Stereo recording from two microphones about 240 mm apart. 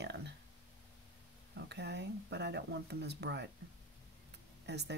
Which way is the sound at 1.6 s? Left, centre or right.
Right.